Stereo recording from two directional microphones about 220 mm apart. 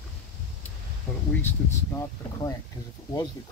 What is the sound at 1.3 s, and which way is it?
Speech, 10° left (ahead or behind).